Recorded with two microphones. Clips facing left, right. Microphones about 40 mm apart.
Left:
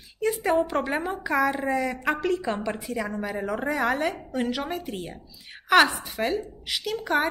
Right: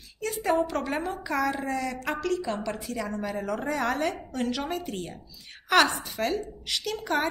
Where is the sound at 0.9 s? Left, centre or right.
Centre; by 2.5 s left.